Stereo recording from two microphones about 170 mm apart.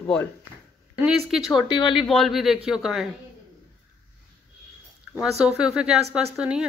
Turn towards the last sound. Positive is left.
turn(degrees=-5)  # may be behind; listen again after turning